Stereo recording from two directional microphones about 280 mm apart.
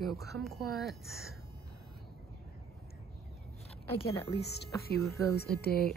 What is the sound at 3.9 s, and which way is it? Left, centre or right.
Speech, centre.